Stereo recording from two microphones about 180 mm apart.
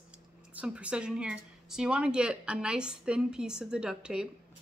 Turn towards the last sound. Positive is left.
turn(degrees=-5)  # may be behind; listen again after turning